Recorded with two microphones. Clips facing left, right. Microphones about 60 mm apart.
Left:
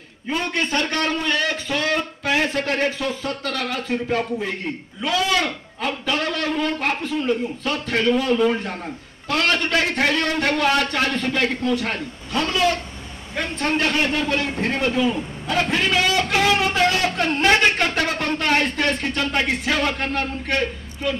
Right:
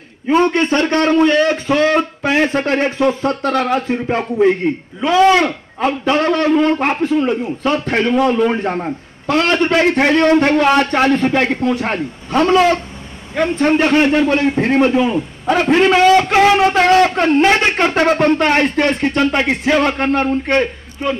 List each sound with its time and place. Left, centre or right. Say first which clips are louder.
0.3 s a man's voice: right 10 dB; right